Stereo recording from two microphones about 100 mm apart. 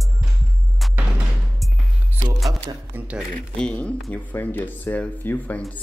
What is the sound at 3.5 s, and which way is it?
Speech, 10° left (ahead or behind).